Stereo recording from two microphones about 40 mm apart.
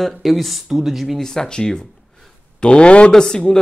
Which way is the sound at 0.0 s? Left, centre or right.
Centre.